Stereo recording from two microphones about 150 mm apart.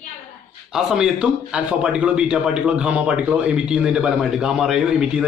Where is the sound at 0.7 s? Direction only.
5° right (ahead or behind).